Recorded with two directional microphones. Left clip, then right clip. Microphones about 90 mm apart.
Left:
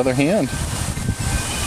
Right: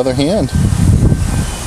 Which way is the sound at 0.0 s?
40° right (ahead or behind).